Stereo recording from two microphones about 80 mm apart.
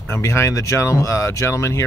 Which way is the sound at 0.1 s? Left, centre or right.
Left.